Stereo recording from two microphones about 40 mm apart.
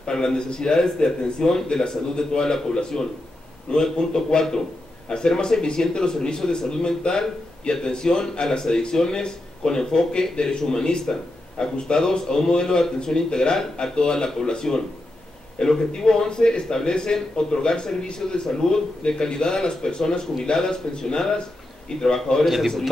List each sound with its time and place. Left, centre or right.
0.0 s a man's voice: centre
22.4 s a man's voice: centre